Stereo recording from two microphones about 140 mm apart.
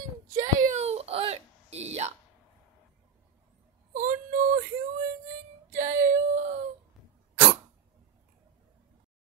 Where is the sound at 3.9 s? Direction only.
65° right (ahead or behind).